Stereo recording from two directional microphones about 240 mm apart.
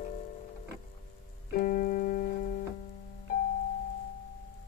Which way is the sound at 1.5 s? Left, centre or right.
Left.